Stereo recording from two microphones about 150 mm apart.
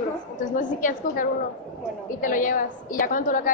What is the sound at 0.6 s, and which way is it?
A woman's voice, 60° left (ahead or behind).